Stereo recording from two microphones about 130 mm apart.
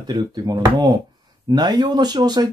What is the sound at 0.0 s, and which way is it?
Speech, 30° right (ahead or behind).